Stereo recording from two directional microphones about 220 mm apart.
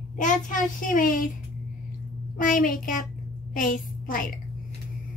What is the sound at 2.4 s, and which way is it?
A child's voice, 40° left (ahead or behind).